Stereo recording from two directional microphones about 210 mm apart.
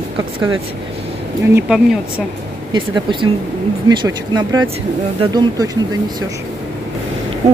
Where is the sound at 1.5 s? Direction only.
5° right (ahead or behind).